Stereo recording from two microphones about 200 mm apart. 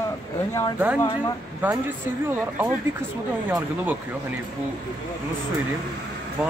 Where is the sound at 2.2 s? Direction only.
10° right (ahead or behind).